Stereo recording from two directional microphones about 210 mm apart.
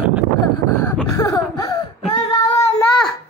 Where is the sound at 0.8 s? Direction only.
15° left (ahead or behind).